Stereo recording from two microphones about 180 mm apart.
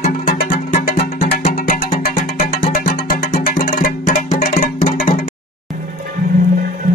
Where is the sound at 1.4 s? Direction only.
50° left (ahead or behind).